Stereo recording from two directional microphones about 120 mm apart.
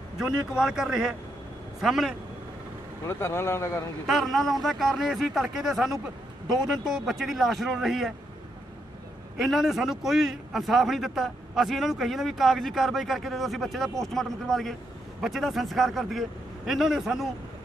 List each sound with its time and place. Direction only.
0.2 s a man's voice: 5° right (ahead or behind)
3.1 s speech: 20° left (ahead or behind)
4.1 s a man's voice: centre (ahead or behind)
9.4 s a man's voice: centre (ahead or behind)